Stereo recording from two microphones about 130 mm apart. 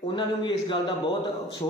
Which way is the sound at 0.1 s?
40° left (ahead or behind).